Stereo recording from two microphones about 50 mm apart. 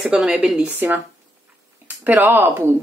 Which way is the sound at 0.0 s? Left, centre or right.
Centre.